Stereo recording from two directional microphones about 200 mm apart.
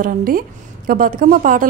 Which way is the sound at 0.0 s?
45° right (ahead or behind).